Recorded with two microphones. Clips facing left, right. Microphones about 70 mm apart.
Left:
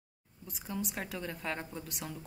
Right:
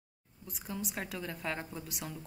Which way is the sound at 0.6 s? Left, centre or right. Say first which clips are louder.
Left 1 dB; centre.